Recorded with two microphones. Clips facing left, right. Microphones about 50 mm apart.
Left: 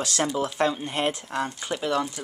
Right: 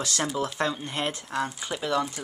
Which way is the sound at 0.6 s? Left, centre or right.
Centre.